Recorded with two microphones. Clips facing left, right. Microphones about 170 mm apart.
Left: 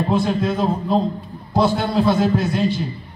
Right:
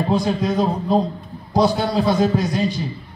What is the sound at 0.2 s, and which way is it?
Speech, 15° right (ahead or behind).